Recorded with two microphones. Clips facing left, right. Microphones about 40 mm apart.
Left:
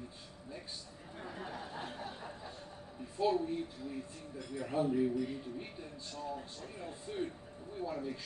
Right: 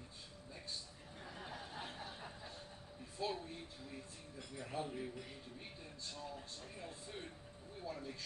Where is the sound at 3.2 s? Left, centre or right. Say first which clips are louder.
Left 10 dB; centre.